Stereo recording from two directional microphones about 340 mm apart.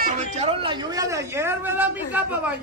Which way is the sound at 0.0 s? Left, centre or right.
Right.